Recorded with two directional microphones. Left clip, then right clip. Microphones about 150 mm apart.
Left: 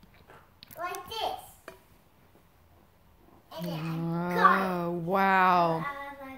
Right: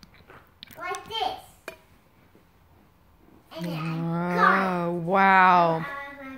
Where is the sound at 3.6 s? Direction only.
15° left (ahead or behind).